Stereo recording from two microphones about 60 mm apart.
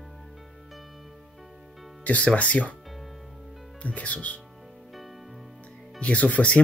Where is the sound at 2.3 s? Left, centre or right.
Left.